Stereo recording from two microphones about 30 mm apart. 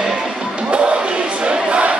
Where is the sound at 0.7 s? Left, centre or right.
Right.